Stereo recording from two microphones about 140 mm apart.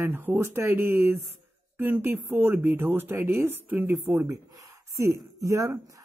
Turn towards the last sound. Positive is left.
turn(degrees=-25)  # may be behind; listen again after turning